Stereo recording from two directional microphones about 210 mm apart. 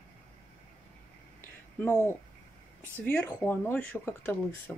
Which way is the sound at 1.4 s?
10° left (ahead or behind).